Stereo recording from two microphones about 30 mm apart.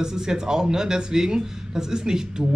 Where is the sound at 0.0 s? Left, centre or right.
Centre.